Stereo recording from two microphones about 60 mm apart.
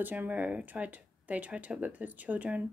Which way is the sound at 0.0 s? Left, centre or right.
Right.